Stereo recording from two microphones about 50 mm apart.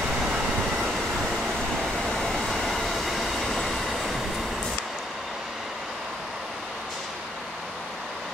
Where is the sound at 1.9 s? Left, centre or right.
Centre.